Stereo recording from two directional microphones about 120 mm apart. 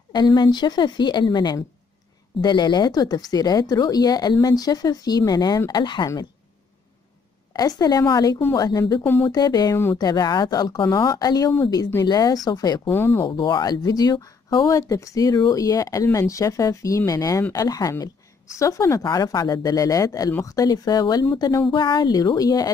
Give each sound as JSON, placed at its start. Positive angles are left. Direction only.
{"t": 0.1, "sound": "speech", "side_deg": 40}
{"t": 7.5, "sound": "speech", "side_deg": 35}
{"t": 9.0, "sound": "speech", "side_deg": 20}
{"t": 9.3, "sound": "speech", "side_deg": 35}
{"t": 12.9, "sound": "speech", "side_deg": 20}
{"t": 13.3, "sound": "speech", "side_deg": 40}